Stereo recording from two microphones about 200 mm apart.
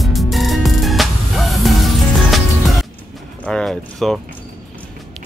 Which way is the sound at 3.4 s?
5° left (ahead or behind).